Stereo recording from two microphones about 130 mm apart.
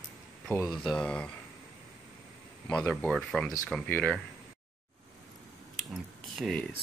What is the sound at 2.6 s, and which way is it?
Speech, 5° left (ahead or behind).